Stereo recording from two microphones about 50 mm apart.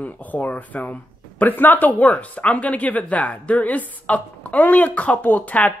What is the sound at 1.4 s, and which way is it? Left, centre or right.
Speech, left.